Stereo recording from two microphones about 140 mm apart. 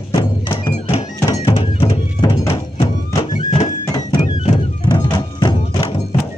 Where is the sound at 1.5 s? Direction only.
40° left (ahead or behind).